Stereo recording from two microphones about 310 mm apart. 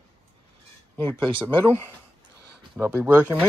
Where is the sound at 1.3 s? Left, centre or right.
Centre.